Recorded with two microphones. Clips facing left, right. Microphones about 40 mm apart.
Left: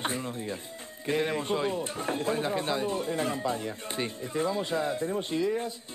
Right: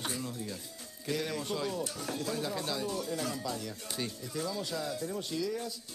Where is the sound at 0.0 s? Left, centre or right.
Left.